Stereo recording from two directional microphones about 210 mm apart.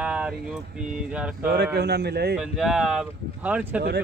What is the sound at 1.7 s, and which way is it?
Speech, 50° right (ahead or behind).